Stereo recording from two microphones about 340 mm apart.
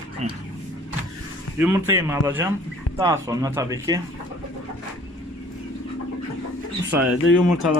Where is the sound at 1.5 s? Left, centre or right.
Centre.